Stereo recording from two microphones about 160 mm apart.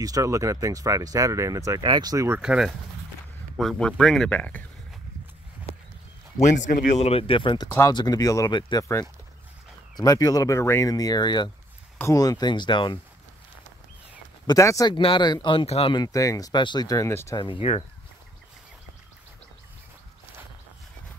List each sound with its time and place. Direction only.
0.0 s speech: 20° right (ahead or behind)
2.4 s speech: 5° right (ahead or behind)
6.4 s speech: 50° left (ahead or behind); by 8.8 s 30° left (ahead or behind)
9.9 s speech: 20° left (ahead or behind)
14.4 s speech: 20° left (ahead or behind)
15.0 s speech: 30° left (ahead or behind)
17.4 s speech: 30° left (ahead or behind)